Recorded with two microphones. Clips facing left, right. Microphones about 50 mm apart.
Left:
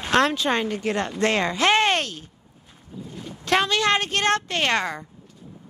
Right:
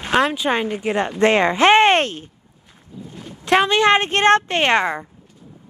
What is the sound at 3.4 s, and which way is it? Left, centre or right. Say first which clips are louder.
Speech: right 6 dB; centre.